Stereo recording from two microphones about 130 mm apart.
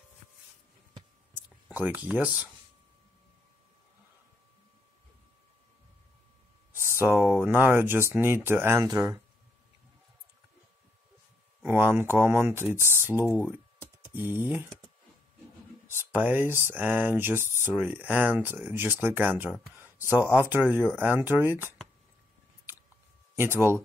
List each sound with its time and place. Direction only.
1.3 s a sound: 15° right (ahead or behind)
6.7 s a sound: 15° right (ahead or behind)
7.4 s speech: 15° right (ahead or behind)
11.6 s speech: 15° right (ahead or behind)
14.3 s speech: 15° right (ahead or behind)
15.9 s speech: 15° right (ahead or behind)
23.3 s speech: 20° right (ahead or behind)